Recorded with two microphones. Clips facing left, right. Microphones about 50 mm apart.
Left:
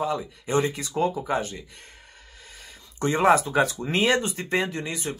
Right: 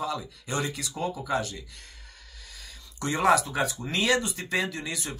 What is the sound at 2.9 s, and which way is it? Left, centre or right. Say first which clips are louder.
Speech: left 3 dB; left.